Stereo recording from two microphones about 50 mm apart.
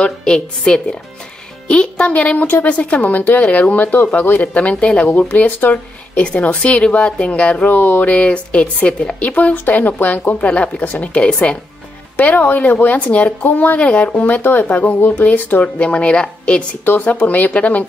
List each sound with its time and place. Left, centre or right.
0.0 s a woman's voice: centre
7.6 s a woman's voice: left
14.2 s a woman's voice: left
16.8 s a woman's voice: left